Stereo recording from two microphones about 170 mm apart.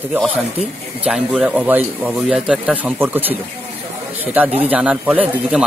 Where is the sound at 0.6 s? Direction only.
35° right (ahead or behind).